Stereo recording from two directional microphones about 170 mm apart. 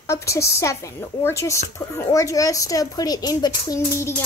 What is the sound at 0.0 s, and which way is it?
A woman's voice, 15° left (ahead or behind).